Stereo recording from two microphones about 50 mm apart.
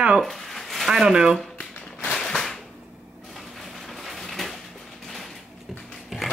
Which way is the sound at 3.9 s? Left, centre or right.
Centre.